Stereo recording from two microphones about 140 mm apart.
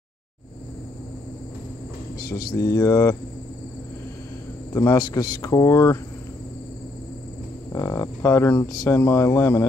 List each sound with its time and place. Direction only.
2.1 s a sound: 90° left
2.5 s speech: 20° left (ahead or behind)
4.7 s speech: 25° left (ahead or behind)
7.7 s speech: 20° left (ahead or behind)